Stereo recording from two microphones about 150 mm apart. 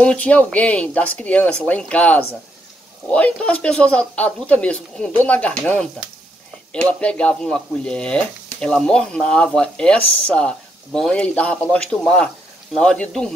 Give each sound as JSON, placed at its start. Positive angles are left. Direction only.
{"t": 0.0, "sound": "speech", "side_deg": 10}